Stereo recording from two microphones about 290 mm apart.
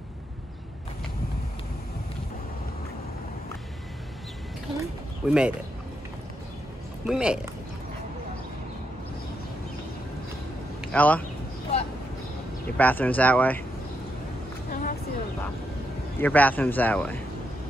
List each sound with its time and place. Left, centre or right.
4.7 s bird: centre
7.1 s speech: centre
10.9 s speech: centre
11.7 s vehicle: left
12.7 s speech: centre
14.7 s a sound: left
16.2 s speech: centre